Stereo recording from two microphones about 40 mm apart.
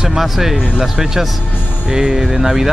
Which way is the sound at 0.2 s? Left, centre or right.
Centre.